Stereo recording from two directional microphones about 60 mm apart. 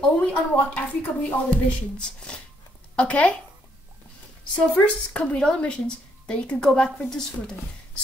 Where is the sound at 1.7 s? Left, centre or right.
Centre.